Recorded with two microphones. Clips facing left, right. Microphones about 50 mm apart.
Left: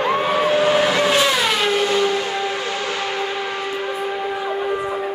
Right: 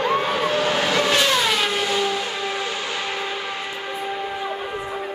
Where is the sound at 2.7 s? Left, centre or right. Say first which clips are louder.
Left 3 dB; left.